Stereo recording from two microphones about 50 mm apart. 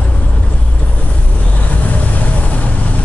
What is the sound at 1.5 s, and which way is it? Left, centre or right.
Vehicle, left.